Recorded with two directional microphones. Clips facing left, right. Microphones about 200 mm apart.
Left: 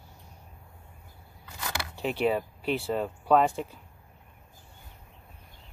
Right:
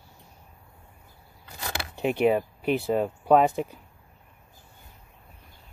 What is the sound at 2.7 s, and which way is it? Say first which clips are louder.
Speech: right 4 dB; 10° right (ahead or behind).